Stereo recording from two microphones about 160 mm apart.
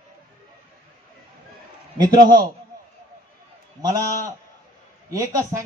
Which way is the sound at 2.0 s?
25° right (ahead or behind).